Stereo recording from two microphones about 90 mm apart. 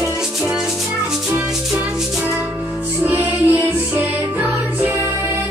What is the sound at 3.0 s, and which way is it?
Music, 20° right (ahead or behind).